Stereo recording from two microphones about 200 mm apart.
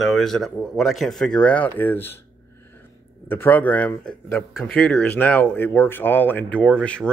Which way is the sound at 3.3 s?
10° left (ahead or behind).